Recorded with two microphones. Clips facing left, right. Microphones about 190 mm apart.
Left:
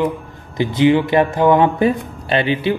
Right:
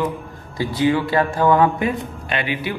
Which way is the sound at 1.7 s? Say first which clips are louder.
Left 6 dB; 35° left (ahead or behind).